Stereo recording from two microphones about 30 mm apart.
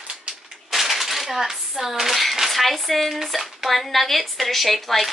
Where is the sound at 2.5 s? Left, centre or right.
Centre.